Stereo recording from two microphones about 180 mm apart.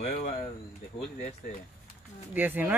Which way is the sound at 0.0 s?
40° left (ahead or behind).